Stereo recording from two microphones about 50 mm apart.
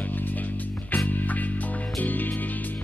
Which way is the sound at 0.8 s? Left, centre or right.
Left.